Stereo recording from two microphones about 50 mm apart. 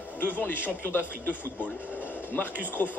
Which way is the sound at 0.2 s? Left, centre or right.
Left.